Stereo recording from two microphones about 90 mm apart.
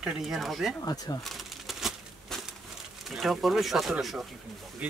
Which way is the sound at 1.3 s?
Centre (ahead or behind).